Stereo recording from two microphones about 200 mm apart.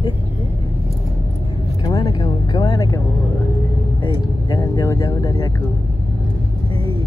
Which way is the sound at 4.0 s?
15° left (ahead or behind).